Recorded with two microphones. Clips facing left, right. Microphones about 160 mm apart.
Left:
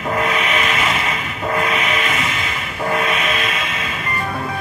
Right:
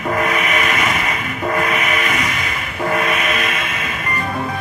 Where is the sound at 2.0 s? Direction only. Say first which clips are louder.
Right 1 dB; 25° left (ahead or behind).